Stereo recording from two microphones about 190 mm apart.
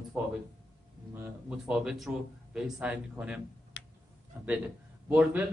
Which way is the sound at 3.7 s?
70° left (ahead or behind).